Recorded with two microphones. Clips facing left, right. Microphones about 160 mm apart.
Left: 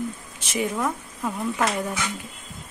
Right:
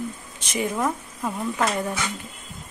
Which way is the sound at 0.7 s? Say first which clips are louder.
Right 1 dB; 5° right (ahead or behind).